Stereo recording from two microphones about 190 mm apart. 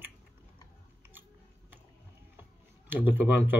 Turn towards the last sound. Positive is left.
turn(degrees=-10)  # may be behind; listen again after turning